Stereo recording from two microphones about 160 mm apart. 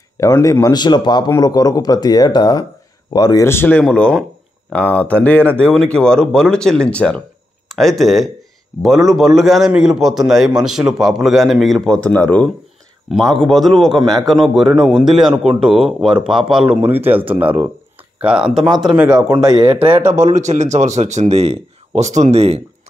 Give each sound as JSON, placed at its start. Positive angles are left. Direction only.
{"t": 0.2, "sound": "a man's voice", "side_deg": 20}
{"t": 18.5, "sound": "a man's voice", "side_deg": 0}
{"t": 19.3, "sound": "speech", "side_deg": -30}
{"t": 20.1, "sound": "speech", "side_deg": -45}